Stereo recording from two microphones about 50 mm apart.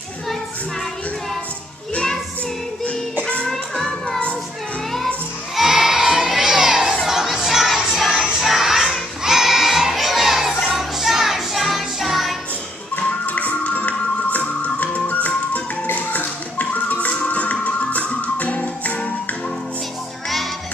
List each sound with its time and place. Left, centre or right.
3.4 s music: centre
5.6 s crowd: centre
7.1 s music: centre
9.2 s crowd: centre
10.7 s music: centre
13.2 s music: left